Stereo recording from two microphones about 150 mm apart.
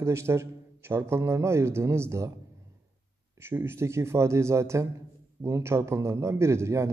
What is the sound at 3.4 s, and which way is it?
A man's voice, 15° right (ahead or behind).